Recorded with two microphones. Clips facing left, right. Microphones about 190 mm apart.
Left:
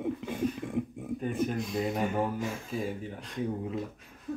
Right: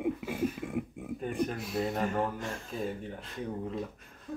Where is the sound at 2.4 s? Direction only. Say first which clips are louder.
Left 2 dB; centre (ahead or behind).